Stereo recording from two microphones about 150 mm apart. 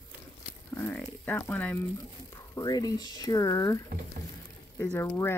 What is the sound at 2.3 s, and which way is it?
Speech, 25° left (ahead or behind).